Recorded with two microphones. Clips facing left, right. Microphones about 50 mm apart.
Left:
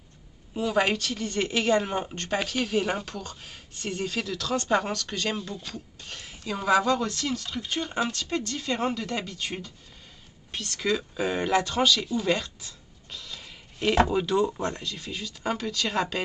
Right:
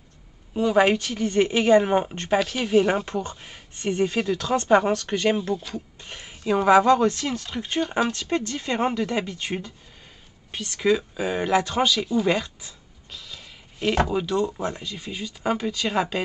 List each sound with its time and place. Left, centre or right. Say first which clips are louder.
0.6 s speech: right 6 dB; centre
0.9 s speech: right 7 dB; centre
2.3 s speech: right 6 dB; centre
2.6 s speech: right 8 dB; centre
3.1 s speech: right 8 dB; right
3.3 s speech: right 2 dB; right
10.5 s speech: right 6 dB; centre
13.1 s speech: even; centre